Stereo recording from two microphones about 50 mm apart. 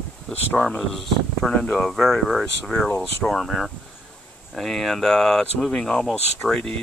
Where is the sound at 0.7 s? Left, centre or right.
Centre.